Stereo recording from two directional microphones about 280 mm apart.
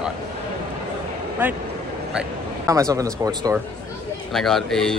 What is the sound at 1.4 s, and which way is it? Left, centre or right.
A man's voice, centre.